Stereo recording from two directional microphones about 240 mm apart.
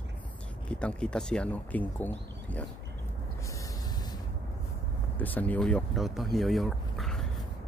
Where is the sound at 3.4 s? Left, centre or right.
Centre.